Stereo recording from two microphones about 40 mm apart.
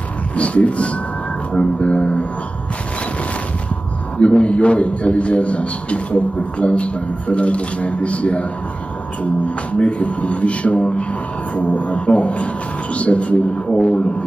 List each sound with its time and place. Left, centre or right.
0.4 s a man's voice: left
4.2 s a man's voice: left